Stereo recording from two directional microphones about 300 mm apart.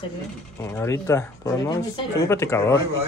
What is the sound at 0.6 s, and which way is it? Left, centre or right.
Speech, centre.